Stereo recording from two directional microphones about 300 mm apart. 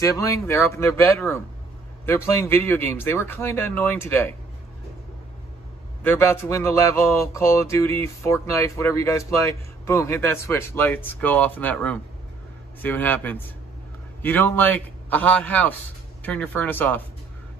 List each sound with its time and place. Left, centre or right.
0.4 s speech: centre
6.0 s a man's voice: centre